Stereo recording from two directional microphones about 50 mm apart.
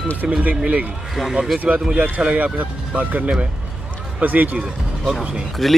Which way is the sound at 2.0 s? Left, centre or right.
Right.